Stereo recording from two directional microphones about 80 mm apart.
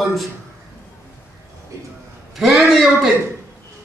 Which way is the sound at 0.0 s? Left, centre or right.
Centre.